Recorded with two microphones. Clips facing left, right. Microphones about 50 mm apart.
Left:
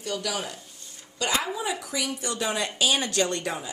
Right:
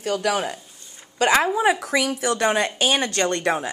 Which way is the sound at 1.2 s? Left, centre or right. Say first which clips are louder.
Right 9 dB; right.